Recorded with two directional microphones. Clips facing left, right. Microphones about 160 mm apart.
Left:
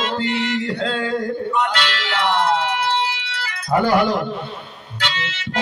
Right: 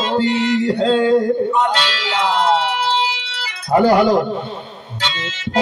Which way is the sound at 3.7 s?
25° right (ahead or behind).